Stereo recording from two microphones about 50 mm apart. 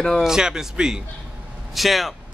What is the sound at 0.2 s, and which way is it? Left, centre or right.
Speech, centre.